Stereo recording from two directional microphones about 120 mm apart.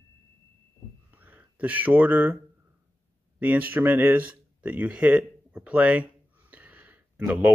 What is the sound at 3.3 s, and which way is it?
Speech, 15° right (ahead or behind).